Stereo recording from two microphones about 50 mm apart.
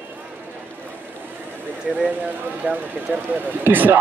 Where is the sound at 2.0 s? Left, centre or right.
Right.